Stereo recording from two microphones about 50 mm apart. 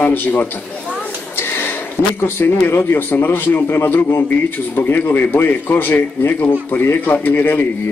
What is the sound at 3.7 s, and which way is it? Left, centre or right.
Speech, left.